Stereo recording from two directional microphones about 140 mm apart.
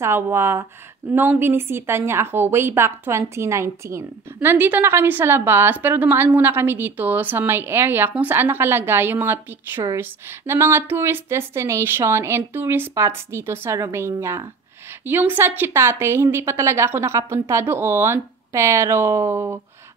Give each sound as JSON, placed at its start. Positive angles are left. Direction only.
{"t": 0.0, "sound": "a woman's voice", "side_deg": -15}